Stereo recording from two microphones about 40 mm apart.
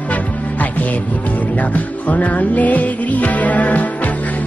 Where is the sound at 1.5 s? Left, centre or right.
Left.